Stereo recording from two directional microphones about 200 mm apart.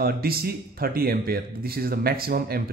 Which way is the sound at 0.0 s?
50° right (ahead or behind).